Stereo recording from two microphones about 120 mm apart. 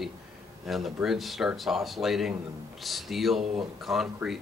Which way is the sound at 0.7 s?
Centre (ahead or behind).